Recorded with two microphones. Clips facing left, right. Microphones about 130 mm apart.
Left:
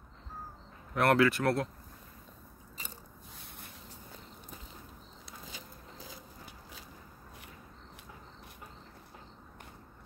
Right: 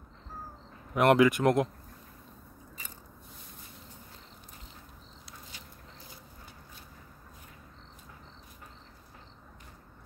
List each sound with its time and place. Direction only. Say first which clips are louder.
0.9 s speech: right 4 dB; 15° right (ahead or behind)